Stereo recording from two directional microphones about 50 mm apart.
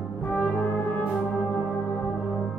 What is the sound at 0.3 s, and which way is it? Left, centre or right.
Brass instrument, left.